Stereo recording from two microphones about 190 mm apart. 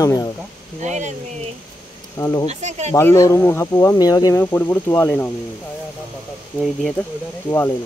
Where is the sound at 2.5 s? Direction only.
35° right (ahead or behind).